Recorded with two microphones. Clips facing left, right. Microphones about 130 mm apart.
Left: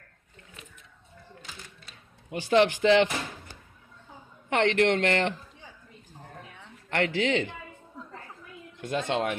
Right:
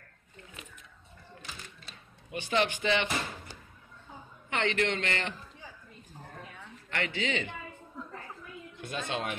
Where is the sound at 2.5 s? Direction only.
85° left.